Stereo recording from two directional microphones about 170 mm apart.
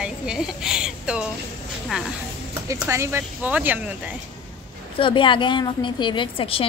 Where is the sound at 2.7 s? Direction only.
15° right (ahead or behind).